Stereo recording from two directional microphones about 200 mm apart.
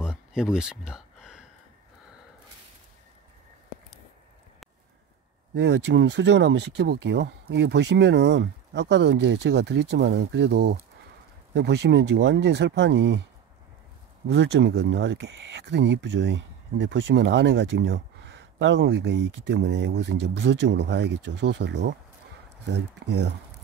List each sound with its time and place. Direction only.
0.0 s a sound: 5° right (ahead or behind)
5.5 s speech: 60° right (ahead or behind)
14.2 s speech: 65° right (ahead or behind)